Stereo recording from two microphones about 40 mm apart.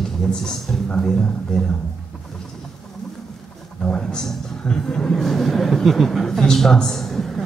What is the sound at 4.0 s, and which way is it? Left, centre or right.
Speech, centre.